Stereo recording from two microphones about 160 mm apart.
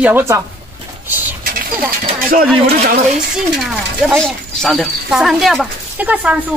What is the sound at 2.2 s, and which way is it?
Speech, 65° right (ahead or behind).